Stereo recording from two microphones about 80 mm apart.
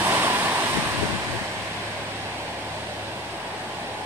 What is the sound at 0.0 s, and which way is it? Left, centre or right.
Waves, right.